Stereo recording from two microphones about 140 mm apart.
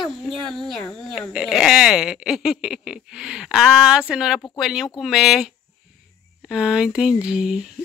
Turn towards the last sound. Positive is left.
turn(degrees=-5)  # may be behind; listen again after turning